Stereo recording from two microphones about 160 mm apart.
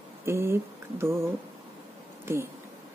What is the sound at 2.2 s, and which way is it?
Speech, 15° right (ahead or behind).